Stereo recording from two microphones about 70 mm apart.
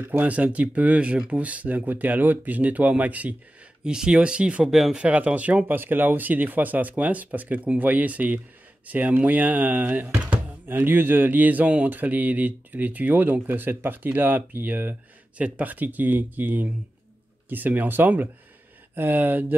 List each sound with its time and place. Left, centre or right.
0.0 s speech: right
3.8 s speech: centre; by 19.4 s right